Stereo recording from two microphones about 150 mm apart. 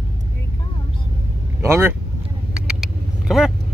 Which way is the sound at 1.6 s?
15° right (ahead or behind).